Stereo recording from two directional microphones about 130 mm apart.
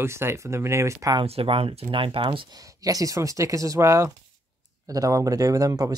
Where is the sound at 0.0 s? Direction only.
20° right (ahead or behind).